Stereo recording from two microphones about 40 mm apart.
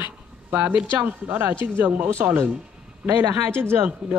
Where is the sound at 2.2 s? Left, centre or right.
Right.